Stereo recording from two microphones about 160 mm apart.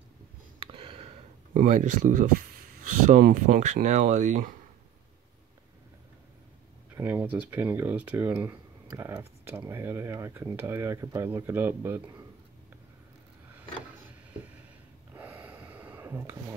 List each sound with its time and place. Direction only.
0.6 s a sound: 35° right (ahead or behind)
1.5 s speech: 55° right (ahead or behind)
7.0 s speech: 10° right (ahead or behind)
15.1 s snort: 10° right (ahead or behind)